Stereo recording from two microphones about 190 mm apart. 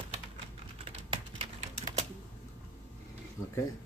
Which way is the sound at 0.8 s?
30° right (ahead or behind).